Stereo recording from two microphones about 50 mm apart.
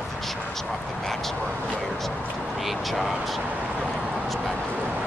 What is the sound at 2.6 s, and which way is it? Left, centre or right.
Speech, centre.